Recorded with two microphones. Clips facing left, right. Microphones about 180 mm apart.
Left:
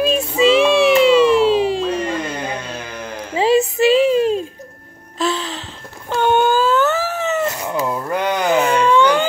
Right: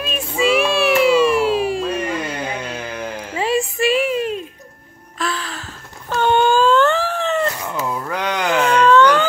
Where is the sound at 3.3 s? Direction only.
25° left (ahead or behind).